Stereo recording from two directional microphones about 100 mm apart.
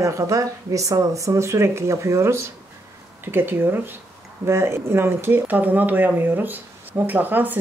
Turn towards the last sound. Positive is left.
turn(degrees=-20)  # may be behind; listen again after turning